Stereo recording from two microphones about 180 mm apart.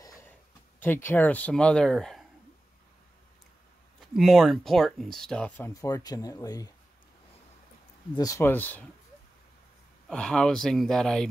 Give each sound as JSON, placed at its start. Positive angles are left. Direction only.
{"t": 0.8, "sound": "speech", "side_deg": 10}
{"t": 4.1, "sound": "speech", "side_deg": 0}
{"t": 5.7, "sound": "speech", "side_deg": 20}
{"t": 8.2, "sound": "speech", "side_deg": 15}
{"t": 10.0, "sound": "speech", "side_deg": 5}